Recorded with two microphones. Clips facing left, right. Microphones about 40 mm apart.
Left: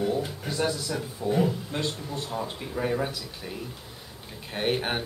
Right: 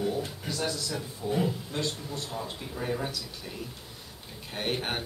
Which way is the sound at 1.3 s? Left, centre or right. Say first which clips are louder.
Left 4 dB; centre.